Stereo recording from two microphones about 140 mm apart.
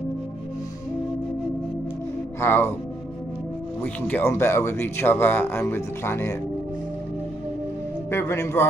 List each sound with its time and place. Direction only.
2.4 s speech: 15° left (ahead or behind)
3.8 s speech: 15° left (ahead or behind)
8.1 s a man's voice: 20° left (ahead or behind)